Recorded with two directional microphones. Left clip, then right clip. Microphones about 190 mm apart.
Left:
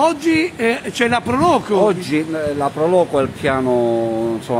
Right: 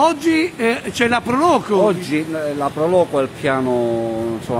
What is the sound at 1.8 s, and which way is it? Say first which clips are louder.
Speech: left 1 dB; 20° left (ahead or behind).